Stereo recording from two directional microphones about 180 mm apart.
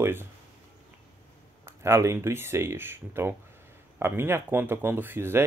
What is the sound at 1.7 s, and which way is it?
Speech, 15° right (ahead or behind).